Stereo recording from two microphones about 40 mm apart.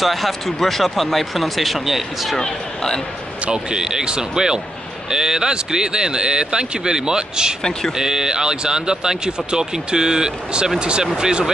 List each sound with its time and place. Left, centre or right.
0.0 s speech: centre
2.3 s speech: centre
3.5 s speech: centre